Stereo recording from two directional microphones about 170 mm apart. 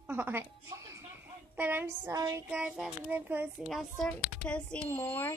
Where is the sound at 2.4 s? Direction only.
5° right (ahead or behind).